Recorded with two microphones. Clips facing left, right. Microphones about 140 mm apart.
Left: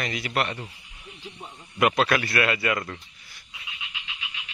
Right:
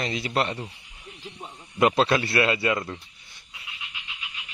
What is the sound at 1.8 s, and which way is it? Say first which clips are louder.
A man's voice: right 1 dB; 25° right (ahead or behind).